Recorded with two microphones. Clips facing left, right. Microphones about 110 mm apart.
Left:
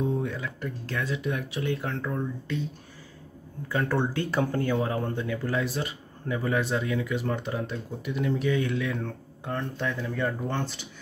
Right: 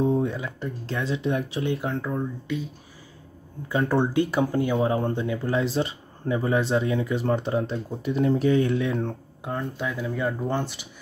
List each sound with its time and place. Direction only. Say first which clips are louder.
0.0 s speech: right 5 dB; 30° right (ahead or behind)
2.0 s speech: right 3 dB; 10° right (ahead or behind)
3.6 s speech: right 4 dB; 20° right (ahead or behind)
4.7 s speech: right 4 dB; 25° right (ahead or behind)
9.4 s speech: right 1 dB; 10° right (ahead or behind)